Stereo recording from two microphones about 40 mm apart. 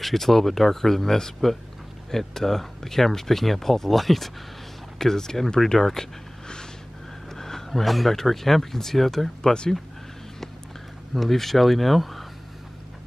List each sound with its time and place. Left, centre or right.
0.0 s speech: centre
5.8 s a sound: centre
7.3 s speech: centre
9.4 s speech: centre
11.1 s speech: centre